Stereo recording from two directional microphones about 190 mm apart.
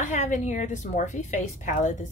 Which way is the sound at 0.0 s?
40° left (ahead or behind).